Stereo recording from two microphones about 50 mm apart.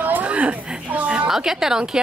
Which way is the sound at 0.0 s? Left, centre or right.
Right.